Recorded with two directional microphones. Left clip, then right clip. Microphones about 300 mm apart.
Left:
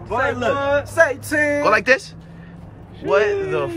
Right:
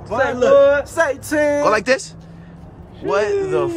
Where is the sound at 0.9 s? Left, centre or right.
Centre.